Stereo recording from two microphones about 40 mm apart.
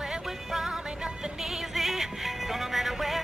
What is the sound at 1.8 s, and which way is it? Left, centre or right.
Music, centre.